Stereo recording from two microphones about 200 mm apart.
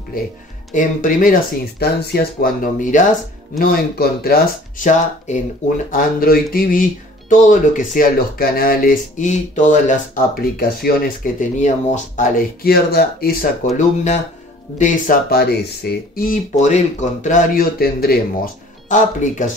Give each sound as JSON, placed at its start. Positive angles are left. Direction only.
{"t": 0.7, "sound": "speech", "side_deg": 40}
{"t": 14.8, "sound": "speech", "side_deg": 45}